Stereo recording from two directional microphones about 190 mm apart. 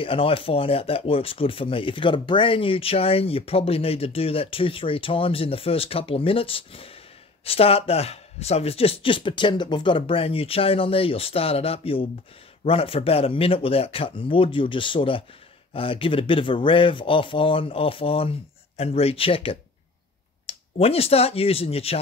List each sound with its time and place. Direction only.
0.0 s speech: 30° left (ahead or behind)